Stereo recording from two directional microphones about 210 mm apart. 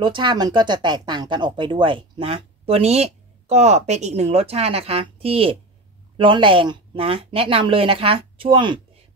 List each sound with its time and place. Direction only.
0.0 s speech: 20° right (ahead or behind)